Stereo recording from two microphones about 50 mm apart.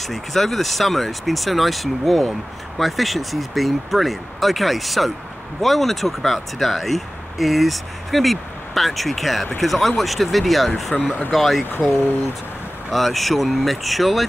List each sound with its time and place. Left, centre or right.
0.0 s speech: centre
10.9 s speech: centre
11.3 s speech: centre
12.9 s speech: centre